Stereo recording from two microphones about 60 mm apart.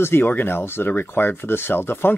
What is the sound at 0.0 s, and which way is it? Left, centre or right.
Speech, left.